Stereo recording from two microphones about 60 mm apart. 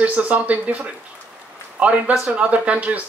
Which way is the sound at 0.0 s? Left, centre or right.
Right.